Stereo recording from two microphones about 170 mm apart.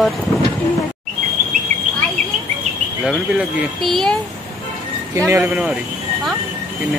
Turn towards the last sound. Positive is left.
turn(degrees=-15)  # may be behind; listen again after turning